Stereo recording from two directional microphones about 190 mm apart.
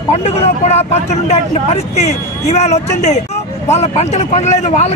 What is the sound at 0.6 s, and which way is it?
Speech, 35° left (ahead or behind).